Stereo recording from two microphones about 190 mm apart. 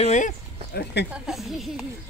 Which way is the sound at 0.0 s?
40° left (ahead or behind).